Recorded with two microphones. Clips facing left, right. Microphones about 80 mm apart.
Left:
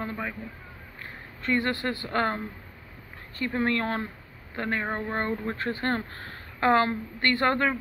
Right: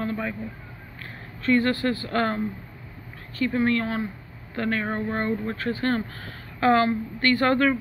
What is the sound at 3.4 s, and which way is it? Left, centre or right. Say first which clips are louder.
Speech: right 4 dB; left.